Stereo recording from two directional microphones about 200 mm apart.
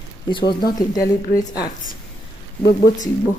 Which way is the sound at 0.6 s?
15° left (ahead or behind).